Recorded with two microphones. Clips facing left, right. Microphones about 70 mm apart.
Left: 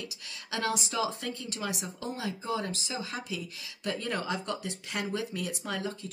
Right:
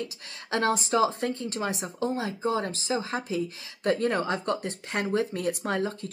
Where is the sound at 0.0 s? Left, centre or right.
Right.